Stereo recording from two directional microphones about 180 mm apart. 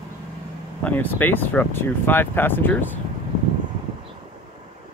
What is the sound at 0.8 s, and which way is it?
Speech, 10° left (ahead or behind).